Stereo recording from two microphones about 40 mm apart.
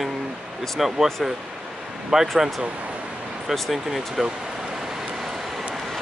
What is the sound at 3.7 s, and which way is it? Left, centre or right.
Speech, centre.